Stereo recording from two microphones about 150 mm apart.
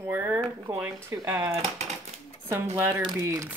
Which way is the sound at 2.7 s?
15° right (ahead or behind).